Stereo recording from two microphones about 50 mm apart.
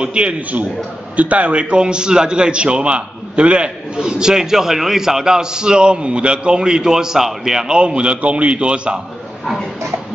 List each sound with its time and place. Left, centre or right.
0.0 s a man's voice: right